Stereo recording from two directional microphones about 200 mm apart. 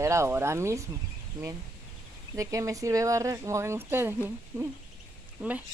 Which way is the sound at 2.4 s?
15° right (ahead or behind).